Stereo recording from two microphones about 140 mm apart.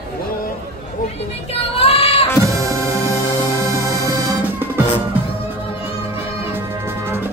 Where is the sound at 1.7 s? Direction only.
45° left (ahead or behind).